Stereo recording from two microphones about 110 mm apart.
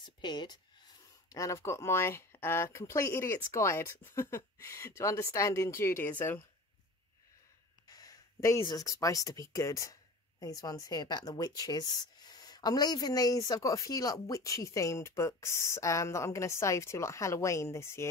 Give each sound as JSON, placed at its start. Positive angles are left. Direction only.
{"t": 0.0, "sound": "speech", "side_deg": 40}
{"t": 1.3, "sound": "speech", "side_deg": 30}
{"t": 7.9, "sound": "a sound", "side_deg": 35}
{"t": 8.6, "sound": "speech", "side_deg": 35}